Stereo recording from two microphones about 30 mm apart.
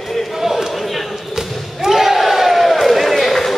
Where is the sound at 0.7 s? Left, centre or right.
Centre.